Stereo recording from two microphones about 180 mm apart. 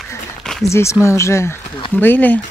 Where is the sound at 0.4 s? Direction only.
Centre (ahead or behind).